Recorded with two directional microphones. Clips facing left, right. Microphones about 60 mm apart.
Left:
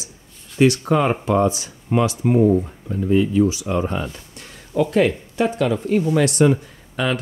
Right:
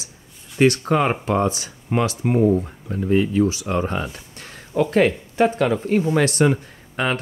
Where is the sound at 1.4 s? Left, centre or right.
Right.